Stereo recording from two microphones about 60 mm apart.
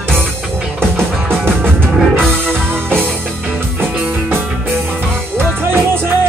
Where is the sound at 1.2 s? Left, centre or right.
Right.